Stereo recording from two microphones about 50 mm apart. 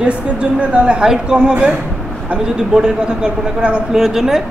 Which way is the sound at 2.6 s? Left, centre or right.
Centre.